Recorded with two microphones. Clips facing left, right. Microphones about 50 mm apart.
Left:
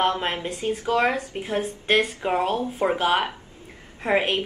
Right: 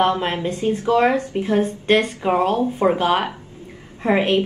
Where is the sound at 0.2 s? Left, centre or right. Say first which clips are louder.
Right 5 dB; centre.